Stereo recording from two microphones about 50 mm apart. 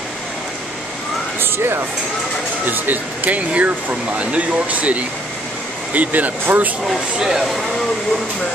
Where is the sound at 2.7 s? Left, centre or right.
Right.